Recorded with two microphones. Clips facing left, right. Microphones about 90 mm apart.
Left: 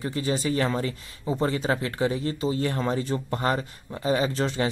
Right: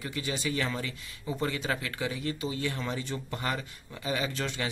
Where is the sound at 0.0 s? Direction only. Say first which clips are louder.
Left 7 dB; 35° left (ahead or behind).